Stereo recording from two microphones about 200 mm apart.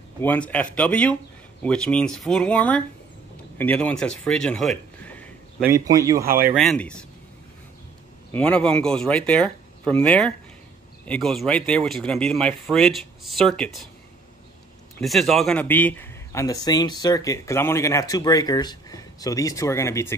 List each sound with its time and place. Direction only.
0.2 s a man's voice: 10° left (ahead or behind)
5.6 s a man's voice: 15° right (ahead or behind)
6.2 s speech: 45° right (ahead or behind)
6.5 s speech: centre (ahead or behind)
8.3 s speech: 5° left (ahead or behind)
15.0 s a man's voice: centre (ahead or behind)